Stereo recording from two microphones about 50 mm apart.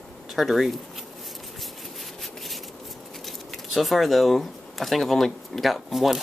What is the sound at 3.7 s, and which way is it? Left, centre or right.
Speech, centre.